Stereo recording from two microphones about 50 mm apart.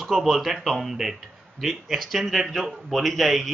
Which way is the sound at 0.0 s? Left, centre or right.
Centre.